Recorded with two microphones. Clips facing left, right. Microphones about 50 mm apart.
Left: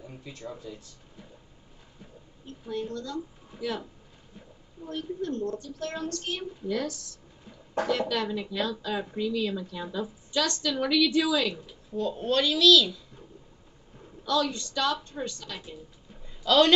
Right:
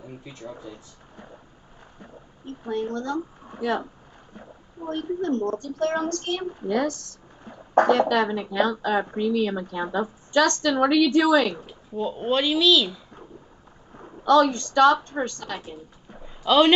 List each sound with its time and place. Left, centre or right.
0.0 s speech: centre
0.6 s speech: right
11.9 s a woman's voice: right
13.9 s speech: right
16.4 s a woman's voice: centre